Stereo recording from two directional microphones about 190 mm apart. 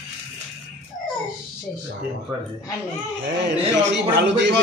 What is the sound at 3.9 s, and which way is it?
Speech, 65° right (ahead or behind).